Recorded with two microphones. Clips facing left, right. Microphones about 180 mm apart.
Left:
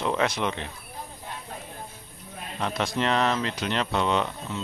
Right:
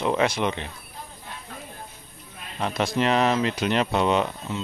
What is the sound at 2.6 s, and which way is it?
Speech, 5° right (ahead or behind).